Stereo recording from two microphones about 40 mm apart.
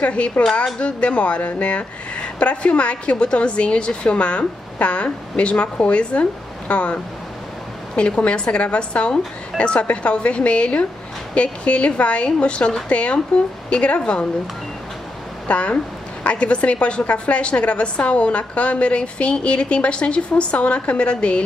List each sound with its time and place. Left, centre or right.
0.0 s a woman's voice: left
8.2 s a woman's voice: left
15.4 s a woman's voice: left